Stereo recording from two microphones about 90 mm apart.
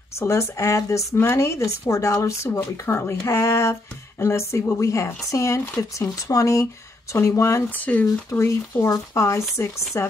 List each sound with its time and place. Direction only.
0.2 s speech: 30° left (ahead or behind)
7.7 s speech: 20° left (ahead or behind)
8.3 s speech: 35° left (ahead or behind)